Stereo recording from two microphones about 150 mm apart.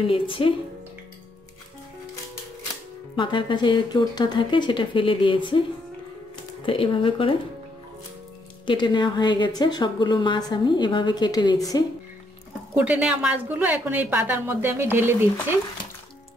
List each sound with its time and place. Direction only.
0.0 s speech: 35° left (ahead or behind)
3.2 s speech: 30° left (ahead or behind)
6.6 s speech: 35° left (ahead or behind)
8.6 s a woman's voice: 30° left (ahead or behind)
12.7 s a woman's voice: 5° right (ahead or behind)